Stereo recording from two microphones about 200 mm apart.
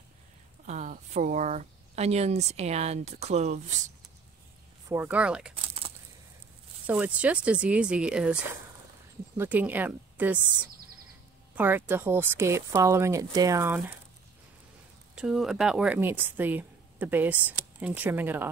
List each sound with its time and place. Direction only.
0.7 s speech: 35° right (ahead or behind)
4.8 s a woman's voice: 10° right (ahead or behind)
6.9 s speech: 5° right (ahead or behind)
9.4 s a woman's voice: 10° right (ahead or behind)
15.1 s a woman's voice: centre (ahead or behind)